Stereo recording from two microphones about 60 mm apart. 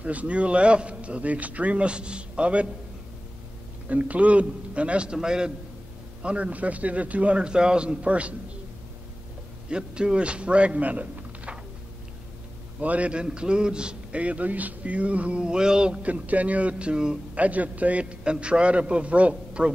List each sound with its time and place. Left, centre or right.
0.0 s a man's voice: right
3.9 s a man's voice: right
9.7 s a man's voice: centre
12.8 s a man's voice: right
17.4 s a man's voice: right